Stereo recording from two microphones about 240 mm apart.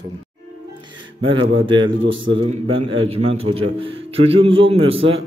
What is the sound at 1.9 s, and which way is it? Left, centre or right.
Speech, right.